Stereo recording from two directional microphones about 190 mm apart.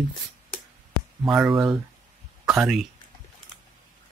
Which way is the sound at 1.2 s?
5° right (ahead or behind).